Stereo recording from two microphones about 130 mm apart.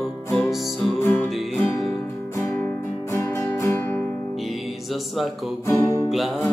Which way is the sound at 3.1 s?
20° left (ahead or behind).